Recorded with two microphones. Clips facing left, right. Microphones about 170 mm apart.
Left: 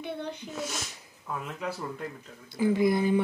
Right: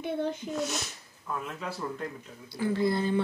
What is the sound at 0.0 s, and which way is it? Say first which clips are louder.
Speech: right 5 dB; 50° right (ahead or behind).